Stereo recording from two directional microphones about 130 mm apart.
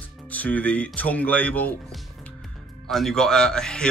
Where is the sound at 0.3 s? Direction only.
10° left (ahead or behind).